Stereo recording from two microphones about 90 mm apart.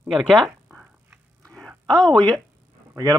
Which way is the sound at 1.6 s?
5° left (ahead or behind).